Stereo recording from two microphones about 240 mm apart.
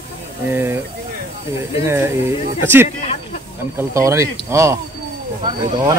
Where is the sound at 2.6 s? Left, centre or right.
Centre.